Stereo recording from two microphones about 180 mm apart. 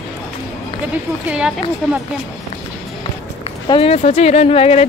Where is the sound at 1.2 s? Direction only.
5° right (ahead or behind).